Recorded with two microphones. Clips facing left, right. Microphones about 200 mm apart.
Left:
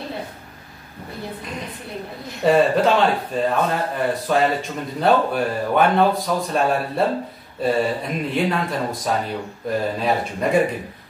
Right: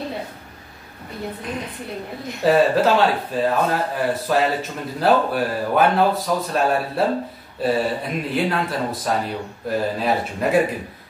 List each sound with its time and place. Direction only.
2.4 s speech: centre (ahead or behind)